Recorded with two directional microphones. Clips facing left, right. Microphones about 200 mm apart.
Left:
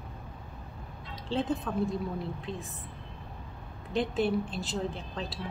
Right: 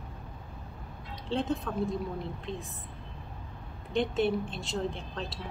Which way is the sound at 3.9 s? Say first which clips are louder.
Right 1 dB; centre (ahead or behind).